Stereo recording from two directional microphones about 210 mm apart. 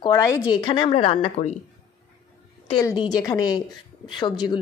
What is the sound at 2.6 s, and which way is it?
A woman's voice, 20° left (ahead or behind).